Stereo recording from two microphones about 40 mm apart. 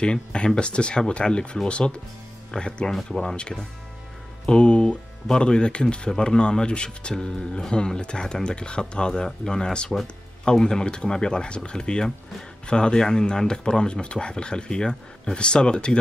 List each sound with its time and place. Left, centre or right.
0.0 s speech: left
2.9 s speech: centre
3.2 s speech: left